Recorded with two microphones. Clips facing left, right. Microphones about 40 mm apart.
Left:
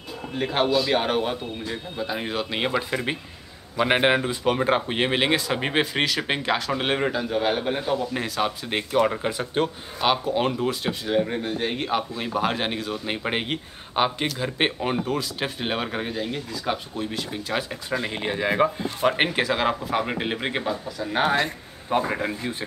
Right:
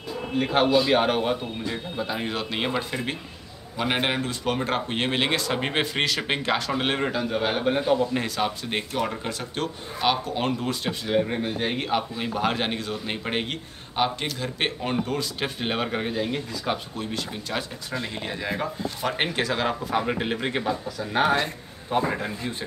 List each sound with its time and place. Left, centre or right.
0.4 s speech: centre
3.8 s speech: centre
9.1 s speech: centre
9.9 s speech: centre
17.9 s speech: left; by 21.5 s centre
21.8 s speech: centre
22.4 s speech: centre